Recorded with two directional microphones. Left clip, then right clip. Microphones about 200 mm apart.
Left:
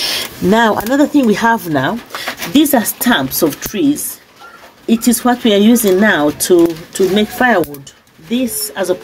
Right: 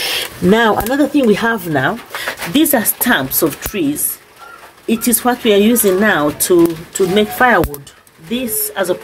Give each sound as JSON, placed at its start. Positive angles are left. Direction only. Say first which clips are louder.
{"t": 0.0, "sound": "speech", "louder": "even", "side_deg": 5}